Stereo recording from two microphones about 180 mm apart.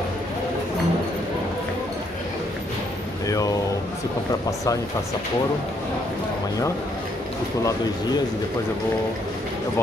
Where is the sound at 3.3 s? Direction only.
20° left (ahead or behind).